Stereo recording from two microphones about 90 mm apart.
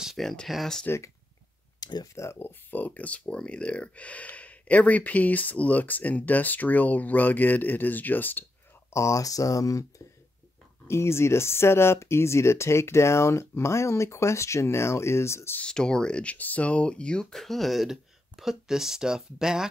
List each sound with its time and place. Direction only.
0.0 s speech: centre (ahead or behind)
0.8 s speech: 30° left (ahead or behind)
1.8 s clicking: 50° left (ahead or behind)
2.1 s speech: 30° left (ahead or behind)
8.9 s speech: 35° left (ahead or behind)
15.6 s speech: 10° left (ahead or behind)